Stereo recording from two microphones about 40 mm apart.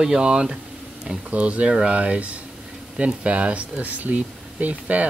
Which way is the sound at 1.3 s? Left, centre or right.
Right.